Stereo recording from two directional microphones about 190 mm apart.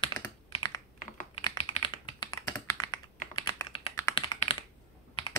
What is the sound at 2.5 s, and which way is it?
Computer keyboard, 15° left (ahead or behind).